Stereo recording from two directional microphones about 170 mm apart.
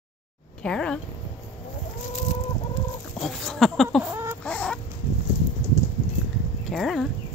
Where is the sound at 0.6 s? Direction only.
5° left (ahead or behind).